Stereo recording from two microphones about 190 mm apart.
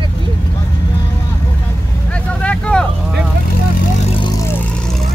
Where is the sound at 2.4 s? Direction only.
5° left (ahead or behind).